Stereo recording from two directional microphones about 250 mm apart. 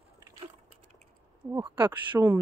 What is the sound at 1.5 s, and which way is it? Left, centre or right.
Speech, centre.